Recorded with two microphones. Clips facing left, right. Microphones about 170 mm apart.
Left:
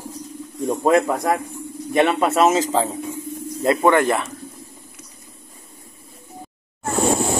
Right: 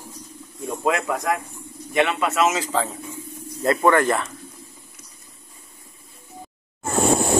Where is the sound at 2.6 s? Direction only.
20° left (ahead or behind).